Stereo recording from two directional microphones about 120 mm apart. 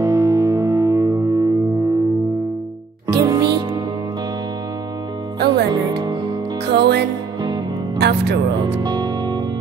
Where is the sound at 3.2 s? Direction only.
35° right (ahead or behind).